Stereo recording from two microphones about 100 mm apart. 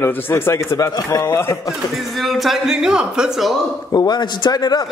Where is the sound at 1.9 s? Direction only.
Centre (ahead or behind).